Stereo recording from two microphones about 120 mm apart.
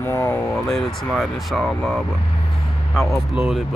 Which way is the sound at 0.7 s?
Centre (ahead or behind).